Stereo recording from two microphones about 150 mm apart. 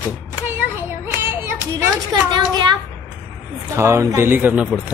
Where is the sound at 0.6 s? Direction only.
15° right (ahead or behind).